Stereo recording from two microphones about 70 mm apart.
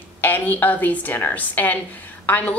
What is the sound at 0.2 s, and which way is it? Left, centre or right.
A woman's voice, left.